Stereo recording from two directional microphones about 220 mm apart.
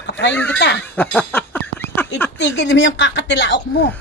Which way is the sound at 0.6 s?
50° left (ahead or behind).